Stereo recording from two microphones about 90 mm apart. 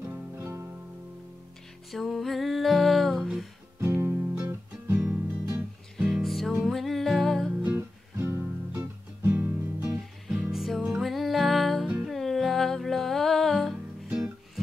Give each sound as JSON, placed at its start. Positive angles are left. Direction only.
{"t": 0.0, "sound": "music", "side_deg": -30}
{"t": 1.9, "sound": "music", "side_deg": 0}
{"t": 3.8, "sound": "music", "side_deg": -25}
{"t": 5.9, "sound": "music", "side_deg": -5}
{"t": 7.6, "sound": "music", "side_deg": -25}
{"t": 9.9, "sound": "music", "side_deg": -5}
{"t": 14.1, "sound": "music", "side_deg": -10}